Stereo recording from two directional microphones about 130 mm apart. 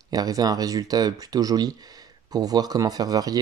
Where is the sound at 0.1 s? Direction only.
30° right (ahead or behind).